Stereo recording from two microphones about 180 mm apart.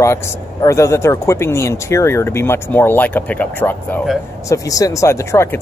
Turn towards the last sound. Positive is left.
turn(degrees=15)  # may be behind; listen again after turning